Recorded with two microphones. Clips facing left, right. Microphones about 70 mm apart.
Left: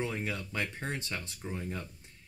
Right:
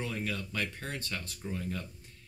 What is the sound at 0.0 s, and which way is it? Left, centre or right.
Speech, left.